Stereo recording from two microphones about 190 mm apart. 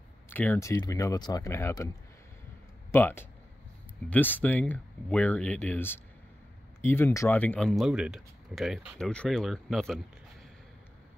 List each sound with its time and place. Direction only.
0.3 s speech: 10° left (ahead or behind)
2.9 s speech: 10° left (ahead or behind)